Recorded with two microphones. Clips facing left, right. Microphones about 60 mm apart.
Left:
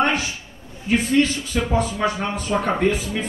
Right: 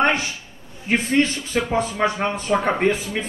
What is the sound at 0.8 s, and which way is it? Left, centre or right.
A man's voice, right.